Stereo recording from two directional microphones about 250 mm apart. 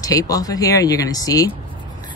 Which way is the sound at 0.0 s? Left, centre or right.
Centre.